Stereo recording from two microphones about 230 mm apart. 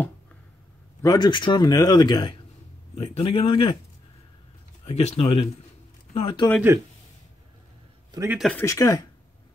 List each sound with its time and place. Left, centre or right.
1.0 s a man's voice: centre
4.8 s a man's voice: left
8.1 s speech: centre
8.4 s speech: centre
8.6 s speech: centre